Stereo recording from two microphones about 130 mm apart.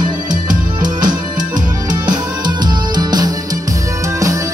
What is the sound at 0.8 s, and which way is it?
Music, 35° right (ahead or behind).